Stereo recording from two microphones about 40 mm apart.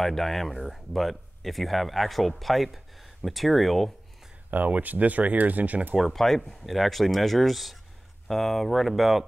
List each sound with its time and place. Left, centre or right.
0.0 s speech: centre
4.5 s speech: right
6.1 s speech: centre